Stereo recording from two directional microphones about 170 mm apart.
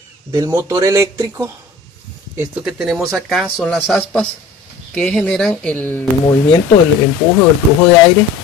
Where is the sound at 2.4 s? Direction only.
5° right (ahead or behind).